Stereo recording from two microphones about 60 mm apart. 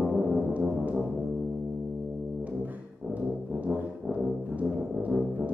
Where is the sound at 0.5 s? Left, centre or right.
Right.